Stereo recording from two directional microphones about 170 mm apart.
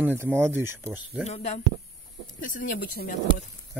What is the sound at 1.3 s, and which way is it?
Speech, 40° left (ahead or behind).